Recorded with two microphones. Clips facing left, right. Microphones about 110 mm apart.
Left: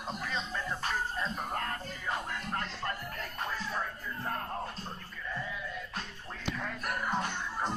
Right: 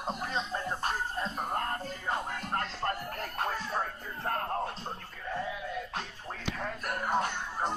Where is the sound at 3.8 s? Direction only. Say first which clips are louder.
Right 2 dB; 55° right (ahead or behind).